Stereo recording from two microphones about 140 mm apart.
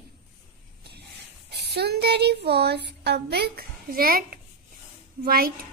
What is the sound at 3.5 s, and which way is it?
A child's voice, 90° right.